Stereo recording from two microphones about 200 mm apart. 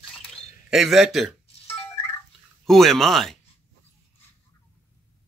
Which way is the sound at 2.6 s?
Centre (ahead or behind).